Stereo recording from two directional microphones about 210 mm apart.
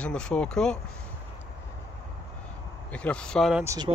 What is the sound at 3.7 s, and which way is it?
Speech, 20° right (ahead or behind).